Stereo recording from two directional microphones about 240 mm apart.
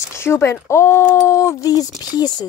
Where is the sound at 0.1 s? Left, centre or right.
Centre.